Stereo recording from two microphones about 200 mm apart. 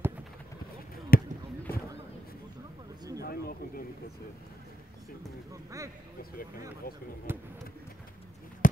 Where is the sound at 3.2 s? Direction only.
50° left (ahead or behind).